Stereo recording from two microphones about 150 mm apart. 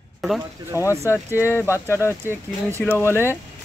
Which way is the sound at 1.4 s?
15° left (ahead or behind).